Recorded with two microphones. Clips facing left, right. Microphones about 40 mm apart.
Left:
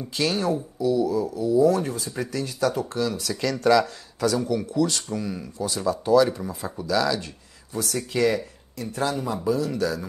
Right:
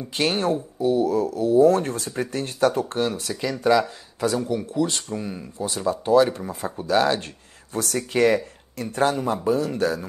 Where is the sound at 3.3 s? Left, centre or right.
Centre.